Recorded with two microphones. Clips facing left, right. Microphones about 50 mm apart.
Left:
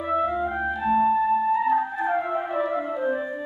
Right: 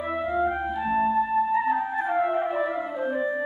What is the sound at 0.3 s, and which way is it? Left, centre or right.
Music, centre.